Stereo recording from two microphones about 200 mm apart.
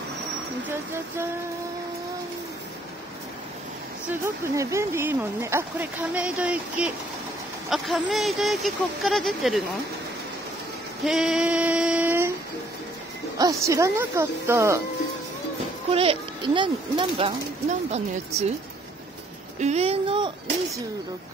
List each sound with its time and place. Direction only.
4.1 s speech: 15° right (ahead or behind)
11.1 s female singing: centre (ahead or behind)
13.4 s speech: 15° right (ahead or behind)
15.9 s speech: 30° right (ahead or behind)
19.6 s speech: 30° right (ahead or behind)